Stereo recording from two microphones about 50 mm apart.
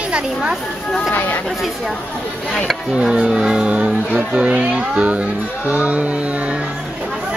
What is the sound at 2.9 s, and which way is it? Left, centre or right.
Speech, centre.